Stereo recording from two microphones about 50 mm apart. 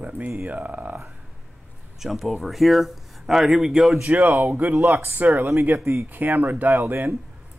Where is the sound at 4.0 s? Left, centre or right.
Right.